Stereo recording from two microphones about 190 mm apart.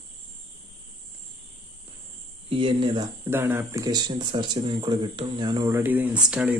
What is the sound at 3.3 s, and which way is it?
Speech, 10° right (ahead or behind).